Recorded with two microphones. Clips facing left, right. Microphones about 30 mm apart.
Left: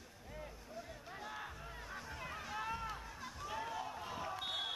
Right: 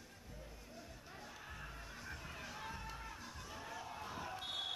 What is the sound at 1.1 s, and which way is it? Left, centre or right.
Music, left.